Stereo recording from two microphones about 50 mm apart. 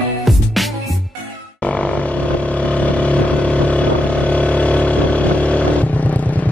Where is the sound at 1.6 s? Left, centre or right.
Left.